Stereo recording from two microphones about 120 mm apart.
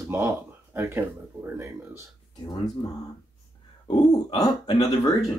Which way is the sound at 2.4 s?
30° left (ahead or behind).